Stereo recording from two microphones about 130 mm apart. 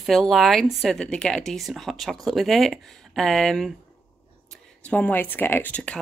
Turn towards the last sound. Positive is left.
turn(degrees=10)  # may be behind; listen again after turning